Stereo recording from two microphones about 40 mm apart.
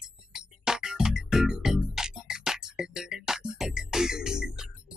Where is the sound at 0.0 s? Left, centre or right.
Centre.